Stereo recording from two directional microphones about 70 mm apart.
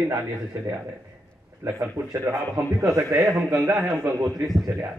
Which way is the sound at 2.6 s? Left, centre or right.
Right.